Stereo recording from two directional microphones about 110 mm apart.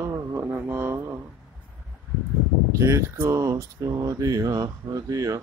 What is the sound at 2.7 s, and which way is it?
Speech, 30° right (ahead or behind).